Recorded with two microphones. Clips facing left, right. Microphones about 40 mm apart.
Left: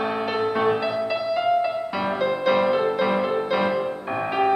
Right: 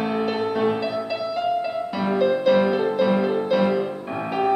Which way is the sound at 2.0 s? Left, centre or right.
Centre.